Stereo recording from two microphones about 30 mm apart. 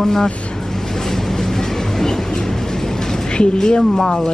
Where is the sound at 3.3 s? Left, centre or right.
Left.